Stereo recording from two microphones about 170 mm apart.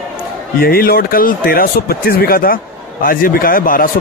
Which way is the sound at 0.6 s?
60° left (ahead or behind).